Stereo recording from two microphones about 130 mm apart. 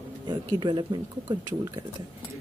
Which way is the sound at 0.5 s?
35° right (ahead or behind).